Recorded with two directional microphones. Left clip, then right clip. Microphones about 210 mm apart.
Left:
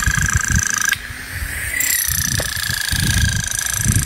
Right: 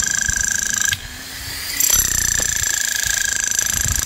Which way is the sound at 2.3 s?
45° right (ahead or behind).